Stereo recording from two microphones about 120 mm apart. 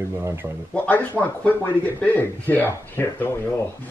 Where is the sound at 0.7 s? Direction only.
15° left (ahead or behind).